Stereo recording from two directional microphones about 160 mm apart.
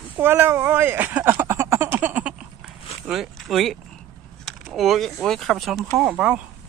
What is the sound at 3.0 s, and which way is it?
Speech, centre (ahead or behind).